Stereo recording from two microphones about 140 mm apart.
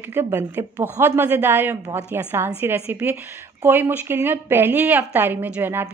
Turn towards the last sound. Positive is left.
turn(degrees=-15)  # may be behind; listen again after turning